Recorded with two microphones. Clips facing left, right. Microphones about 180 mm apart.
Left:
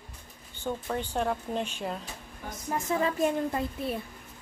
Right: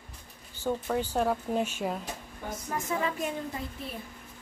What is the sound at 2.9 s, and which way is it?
Speech, 35° left (ahead or behind).